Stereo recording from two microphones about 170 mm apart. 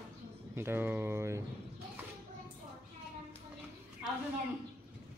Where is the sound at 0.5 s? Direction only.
15° right (ahead or behind).